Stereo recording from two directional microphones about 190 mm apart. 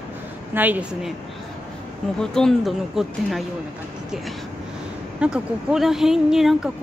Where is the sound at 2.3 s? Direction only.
Centre (ahead or behind).